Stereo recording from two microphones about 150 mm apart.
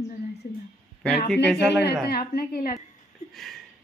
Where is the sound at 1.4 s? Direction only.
5° left (ahead or behind).